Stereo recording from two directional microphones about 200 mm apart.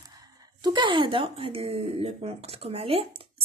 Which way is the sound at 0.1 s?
20° right (ahead or behind).